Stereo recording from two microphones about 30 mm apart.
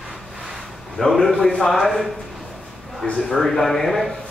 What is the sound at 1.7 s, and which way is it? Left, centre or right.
Speech, centre.